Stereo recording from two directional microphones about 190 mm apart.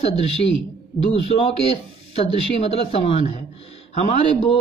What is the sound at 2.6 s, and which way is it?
A man's voice, 30° left (ahead or behind).